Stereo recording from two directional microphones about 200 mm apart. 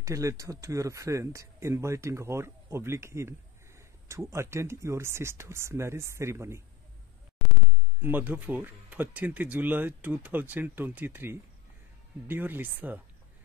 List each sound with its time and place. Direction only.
0.0 s speech: 15° right (ahead or behind)
8.0 s speech: 10° right (ahead or behind)